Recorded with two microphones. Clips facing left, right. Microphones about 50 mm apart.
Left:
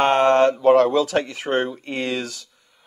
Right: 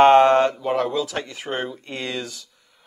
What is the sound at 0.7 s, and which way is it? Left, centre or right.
Speech, centre.